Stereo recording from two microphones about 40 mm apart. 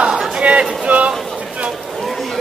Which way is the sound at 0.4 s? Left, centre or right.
Right.